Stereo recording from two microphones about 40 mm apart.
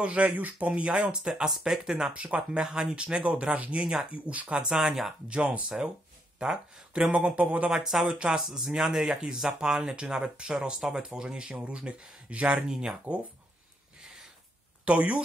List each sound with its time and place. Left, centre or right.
0.0 s speech: right
0.7 s speech: right
1.3 s speech: centre
2.1 s speech: right
2.6 s speech: centre
4.1 s speech: right
6.4 s speech: centre; by 7.7 s right
7.8 s speech: centre
11.4 s speech: right
12.6 s speech: centre
14.9 s speech: right